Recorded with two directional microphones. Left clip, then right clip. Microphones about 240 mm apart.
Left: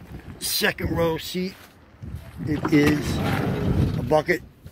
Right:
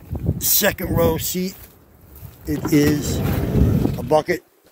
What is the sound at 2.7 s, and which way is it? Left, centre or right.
Speech, centre.